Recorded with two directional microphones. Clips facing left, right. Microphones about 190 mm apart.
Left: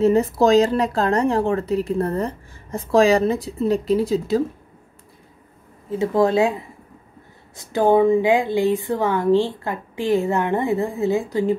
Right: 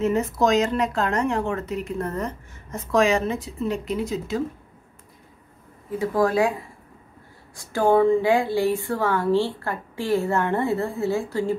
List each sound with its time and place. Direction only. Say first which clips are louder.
0.0 s speech: left 5 dB; 35° left (ahead or behind)
5.9 s a woman's voice: left 4 dB; 25° left (ahead or behind)